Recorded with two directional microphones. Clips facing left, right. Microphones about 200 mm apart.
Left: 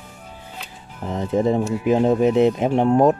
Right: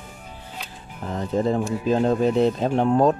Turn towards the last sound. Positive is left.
turn(degrees=15)  # may be behind; listen again after turning